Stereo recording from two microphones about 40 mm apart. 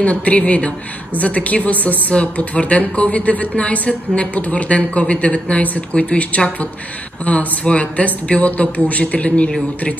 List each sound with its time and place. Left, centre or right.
0.0 s speech: left